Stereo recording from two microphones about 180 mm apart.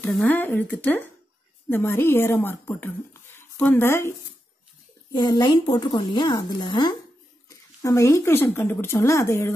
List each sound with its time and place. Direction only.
0.0 s speech: 10° left (ahead or behind)
5.1 s a woman's voice: 25° left (ahead or behind)